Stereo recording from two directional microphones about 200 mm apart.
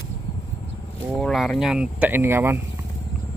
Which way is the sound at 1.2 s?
Centre (ahead or behind).